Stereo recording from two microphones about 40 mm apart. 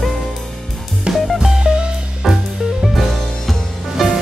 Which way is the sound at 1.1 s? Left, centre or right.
Centre.